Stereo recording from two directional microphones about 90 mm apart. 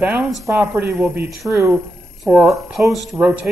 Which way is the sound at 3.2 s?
15° right (ahead or behind).